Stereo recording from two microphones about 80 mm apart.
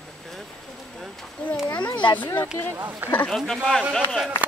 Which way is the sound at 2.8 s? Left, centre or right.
Right.